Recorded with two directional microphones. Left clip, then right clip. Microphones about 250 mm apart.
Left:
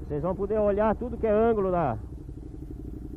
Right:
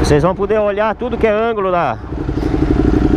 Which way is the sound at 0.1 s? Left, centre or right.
Centre.